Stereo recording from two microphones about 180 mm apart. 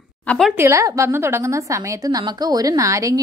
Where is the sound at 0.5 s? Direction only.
15° right (ahead or behind).